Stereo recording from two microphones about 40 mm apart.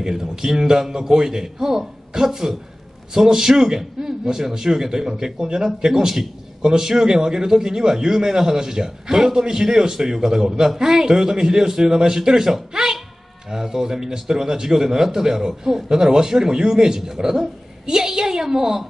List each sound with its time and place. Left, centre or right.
0.0 s a man's voice: centre
12.7 s cat: centre
13.5 s a man's voice: centre